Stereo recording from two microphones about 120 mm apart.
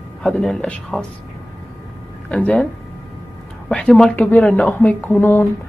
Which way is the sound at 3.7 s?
5° left (ahead or behind).